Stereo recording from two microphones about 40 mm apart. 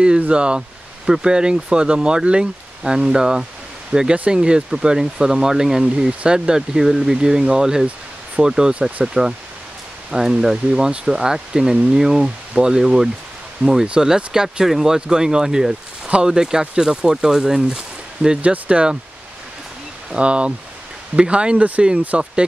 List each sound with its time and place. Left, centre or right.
0.3 s speech: right
0.6 s speech: centre
4.1 s speech: right
4.4 s speech: centre
13.6 s speech: right
14.0 s speech: centre
18.4 s speech: right
20.2 s speech: right